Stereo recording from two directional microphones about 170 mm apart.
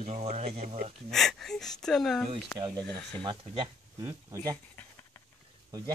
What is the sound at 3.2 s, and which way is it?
Speech, 30° right (ahead or behind).